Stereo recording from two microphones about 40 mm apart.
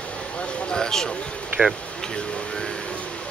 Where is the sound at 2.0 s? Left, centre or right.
Left.